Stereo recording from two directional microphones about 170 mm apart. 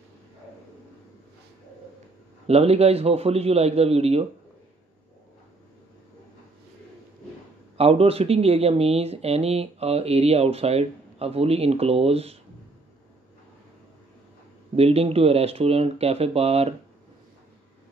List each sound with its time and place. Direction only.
2.4 s speech: 35° right (ahead or behind)
7.7 s speech: 35° right (ahead or behind)
14.8 s speech: 35° right (ahead or behind)